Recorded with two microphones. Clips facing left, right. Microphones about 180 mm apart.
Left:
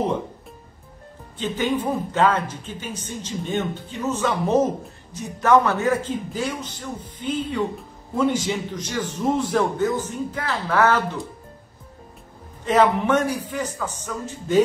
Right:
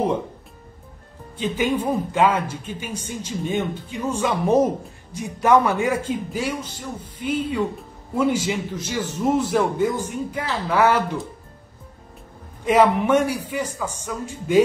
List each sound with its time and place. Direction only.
1.4 s speech: 10° right (ahead or behind)
12.6 s speech: 10° right (ahead or behind)